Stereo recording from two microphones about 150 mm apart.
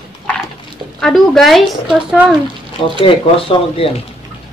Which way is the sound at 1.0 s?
Centre (ahead or behind).